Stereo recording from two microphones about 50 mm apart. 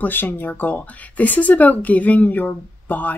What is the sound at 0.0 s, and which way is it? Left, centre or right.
Speech, left.